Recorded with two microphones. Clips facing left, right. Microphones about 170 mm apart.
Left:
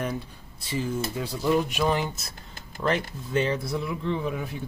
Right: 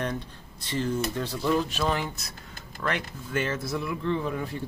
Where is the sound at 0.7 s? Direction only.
5° left (ahead or behind); by 3.5 s 25° left (ahead or behind).